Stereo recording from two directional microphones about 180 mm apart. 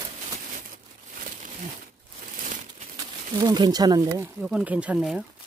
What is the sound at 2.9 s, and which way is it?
Speech, 20° right (ahead or behind).